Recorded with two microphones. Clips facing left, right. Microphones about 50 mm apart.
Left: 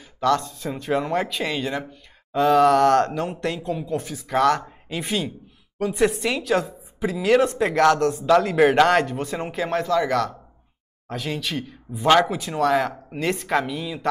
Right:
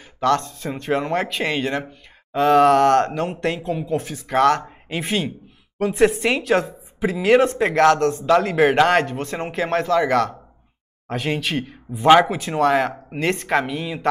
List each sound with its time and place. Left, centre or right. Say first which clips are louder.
0.2 s a woman's voice: right 2 dB; right
12.1 s speech: right 4 dB; centre
12.4 s a woman's voice: right 2 dB; right